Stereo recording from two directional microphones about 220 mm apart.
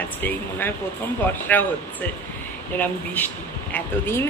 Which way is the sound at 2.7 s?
5° left (ahead or behind).